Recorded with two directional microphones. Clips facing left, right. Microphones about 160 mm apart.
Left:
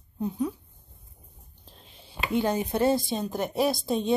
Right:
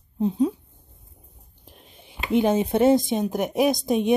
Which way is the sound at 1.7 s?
15° right (ahead or behind).